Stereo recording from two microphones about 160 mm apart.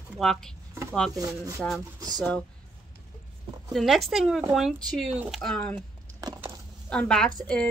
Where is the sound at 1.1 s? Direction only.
20° right (ahead or behind).